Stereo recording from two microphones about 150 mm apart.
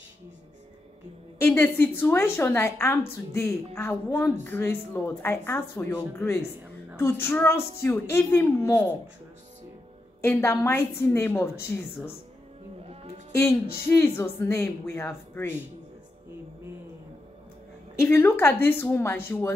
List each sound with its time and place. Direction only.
1.4 s speech: 15° left (ahead or behind)
10.2 s speech: 15° left (ahead or behind)
13.8 s speech: 15° left (ahead or behind)
18.0 s speech: 15° left (ahead or behind)